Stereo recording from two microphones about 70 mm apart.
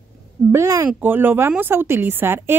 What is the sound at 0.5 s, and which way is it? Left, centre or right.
Speech, right.